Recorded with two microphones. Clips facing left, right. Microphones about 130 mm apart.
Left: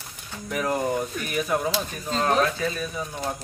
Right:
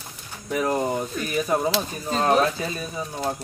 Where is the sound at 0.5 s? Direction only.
20° right (ahead or behind).